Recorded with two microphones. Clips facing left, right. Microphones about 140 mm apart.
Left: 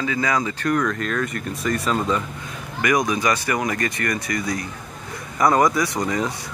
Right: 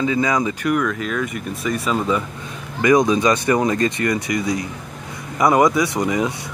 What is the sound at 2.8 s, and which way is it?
Speech, 25° right (ahead or behind).